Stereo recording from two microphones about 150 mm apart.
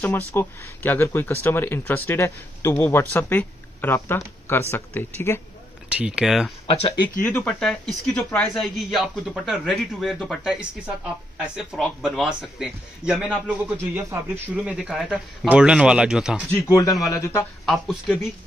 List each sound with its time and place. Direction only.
0.0 s speech: 15° left (ahead or behind)
5.9 s speech: 5° right (ahead or behind)
7.2 s speech: 10° left (ahead or behind)
11.5 s speech: 5° right (ahead or behind)
16.6 s a man's voice: 25° left (ahead or behind)
17.6 s speech: centre (ahead or behind)